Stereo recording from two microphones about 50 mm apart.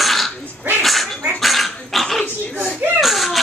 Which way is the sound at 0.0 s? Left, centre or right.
Centre.